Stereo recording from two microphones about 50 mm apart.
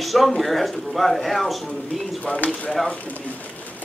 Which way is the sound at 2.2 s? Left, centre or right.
Left.